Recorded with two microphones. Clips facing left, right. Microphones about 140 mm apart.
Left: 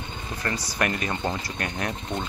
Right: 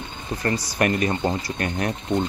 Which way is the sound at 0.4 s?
30° right (ahead or behind).